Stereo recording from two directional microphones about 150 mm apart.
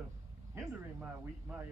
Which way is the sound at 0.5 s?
15° right (ahead or behind).